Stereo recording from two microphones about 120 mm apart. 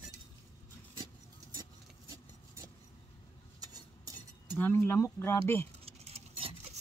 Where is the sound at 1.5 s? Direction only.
30° right (ahead or behind).